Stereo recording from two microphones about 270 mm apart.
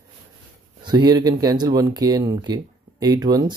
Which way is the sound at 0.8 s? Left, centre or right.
Centre.